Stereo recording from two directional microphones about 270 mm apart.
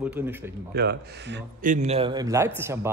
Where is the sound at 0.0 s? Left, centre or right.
Centre.